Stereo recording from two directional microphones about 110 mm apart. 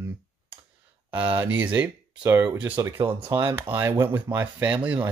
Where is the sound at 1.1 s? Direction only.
15° right (ahead or behind).